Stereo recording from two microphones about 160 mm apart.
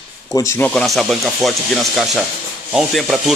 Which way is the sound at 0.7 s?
Centre (ahead or behind).